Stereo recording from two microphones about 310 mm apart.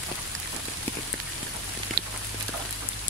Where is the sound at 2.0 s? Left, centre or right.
Right.